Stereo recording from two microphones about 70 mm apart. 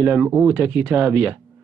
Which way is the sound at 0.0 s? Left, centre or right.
Right.